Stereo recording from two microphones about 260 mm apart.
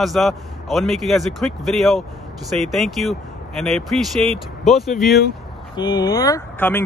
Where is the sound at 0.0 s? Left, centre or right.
Centre.